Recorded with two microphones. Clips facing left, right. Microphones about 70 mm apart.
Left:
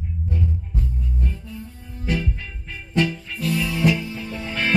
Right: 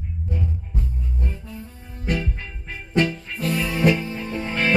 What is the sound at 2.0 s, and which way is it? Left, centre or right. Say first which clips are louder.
Music: even; right.